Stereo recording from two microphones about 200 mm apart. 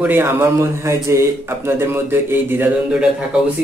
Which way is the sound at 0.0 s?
10° right (ahead or behind).